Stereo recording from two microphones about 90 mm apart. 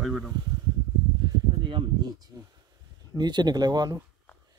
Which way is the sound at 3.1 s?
50° right (ahead or behind).